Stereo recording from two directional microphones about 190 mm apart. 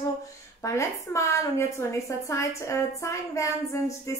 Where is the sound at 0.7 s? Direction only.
15° left (ahead or behind).